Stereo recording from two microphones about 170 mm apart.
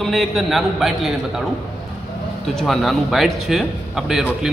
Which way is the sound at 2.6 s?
Centre (ahead or behind).